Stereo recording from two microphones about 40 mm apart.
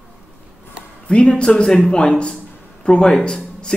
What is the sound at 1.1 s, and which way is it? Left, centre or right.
A man's voice, left.